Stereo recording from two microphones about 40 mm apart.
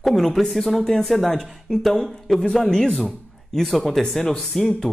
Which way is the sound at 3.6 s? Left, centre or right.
Centre.